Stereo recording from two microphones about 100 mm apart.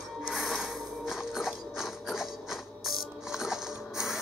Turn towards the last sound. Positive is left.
turn(degrees=-5)  # may be behind; listen again after turning